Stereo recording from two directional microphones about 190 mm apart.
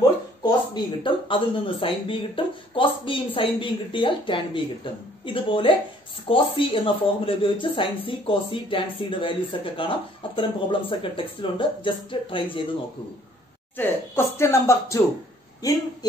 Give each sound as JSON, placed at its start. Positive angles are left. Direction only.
{"t": 0.4, "sound": "speech", "side_deg": 20}
{"t": 13.7, "sound": "speech", "side_deg": 15}